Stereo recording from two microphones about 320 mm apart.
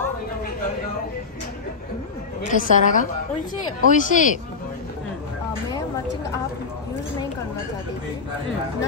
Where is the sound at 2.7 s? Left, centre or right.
Left.